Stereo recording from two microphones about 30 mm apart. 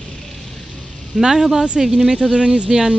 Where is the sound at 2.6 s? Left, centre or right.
Centre.